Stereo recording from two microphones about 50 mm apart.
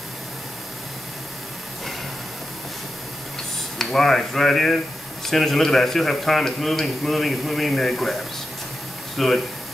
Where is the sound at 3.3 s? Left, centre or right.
Centre.